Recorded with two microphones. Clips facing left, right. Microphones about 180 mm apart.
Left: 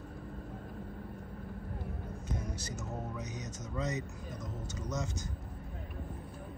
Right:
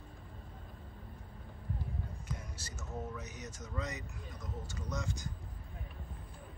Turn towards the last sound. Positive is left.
turn(degrees=20)  # may be behind; listen again after turning